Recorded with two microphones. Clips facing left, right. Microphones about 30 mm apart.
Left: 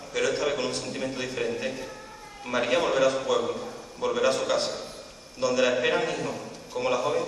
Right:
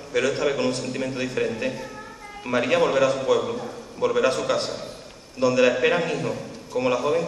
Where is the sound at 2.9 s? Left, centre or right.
Right.